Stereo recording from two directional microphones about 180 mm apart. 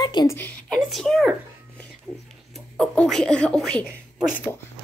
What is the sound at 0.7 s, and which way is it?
Speech, 5° left (ahead or behind).